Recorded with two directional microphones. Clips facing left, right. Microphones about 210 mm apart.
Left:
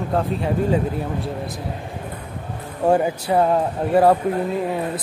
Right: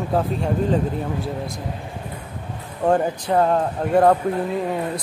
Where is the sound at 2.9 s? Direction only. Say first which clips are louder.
Left 1 dB; 10° left (ahead or behind).